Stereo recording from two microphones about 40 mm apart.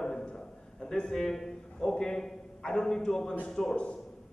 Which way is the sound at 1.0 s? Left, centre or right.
Centre.